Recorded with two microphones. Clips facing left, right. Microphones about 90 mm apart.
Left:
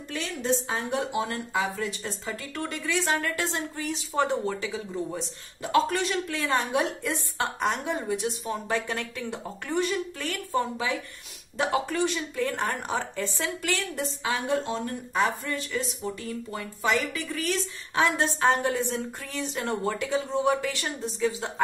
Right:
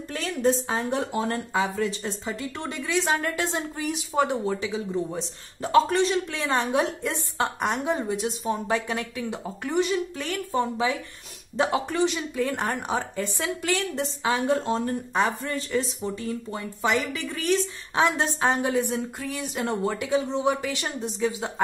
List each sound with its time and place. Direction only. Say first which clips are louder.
0.1 s speech: right 4 dB; 40° right (ahead or behind); by 5.2 s 20° right (ahead or behind)
5.6 s speech: right 4 dB; 30° right (ahead or behind)